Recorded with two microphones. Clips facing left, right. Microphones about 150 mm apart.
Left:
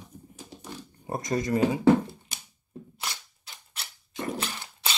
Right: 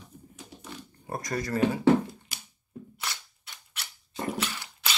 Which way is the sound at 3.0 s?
30° left (ahead or behind).